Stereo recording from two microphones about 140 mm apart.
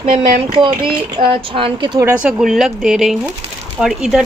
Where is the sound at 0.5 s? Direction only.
35° right (ahead or behind).